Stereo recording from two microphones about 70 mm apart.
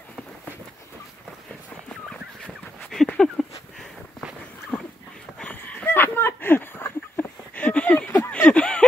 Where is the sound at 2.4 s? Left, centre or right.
Centre.